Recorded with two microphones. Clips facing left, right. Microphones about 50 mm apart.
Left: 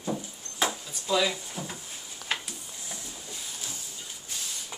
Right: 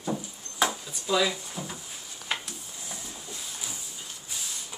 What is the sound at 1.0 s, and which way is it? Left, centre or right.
Speech, centre.